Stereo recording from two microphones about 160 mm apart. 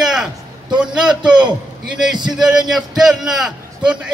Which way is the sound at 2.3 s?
5° right (ahead or behind).